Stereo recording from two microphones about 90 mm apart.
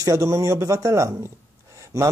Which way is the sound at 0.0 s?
35° right (ahead or behind).